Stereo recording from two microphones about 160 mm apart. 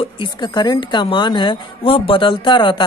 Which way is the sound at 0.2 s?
30° left (ahead or behind).